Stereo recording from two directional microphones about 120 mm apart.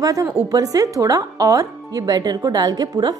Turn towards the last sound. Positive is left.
turn(degrees=-35)  # may be behind; listen again after turning